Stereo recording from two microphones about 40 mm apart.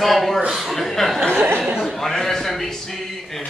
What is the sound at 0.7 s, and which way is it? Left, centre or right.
Speech, centre.